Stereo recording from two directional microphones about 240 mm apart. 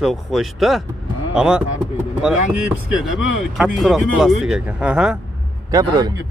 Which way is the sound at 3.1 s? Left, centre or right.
Centre.